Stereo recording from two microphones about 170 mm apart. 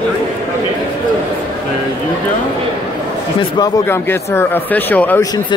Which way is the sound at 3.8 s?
15° left (ahead or behind).